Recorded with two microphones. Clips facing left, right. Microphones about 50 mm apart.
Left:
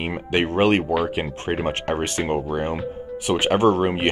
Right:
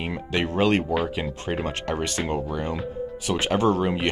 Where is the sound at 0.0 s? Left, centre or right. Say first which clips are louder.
Left 4 dB; left.